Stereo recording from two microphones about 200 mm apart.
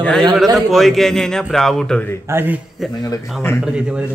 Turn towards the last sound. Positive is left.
turn(degrees=-5)  # may be behind; listen again after turning